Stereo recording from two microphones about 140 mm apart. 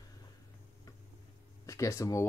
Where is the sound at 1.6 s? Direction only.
20° left (ahead or behind).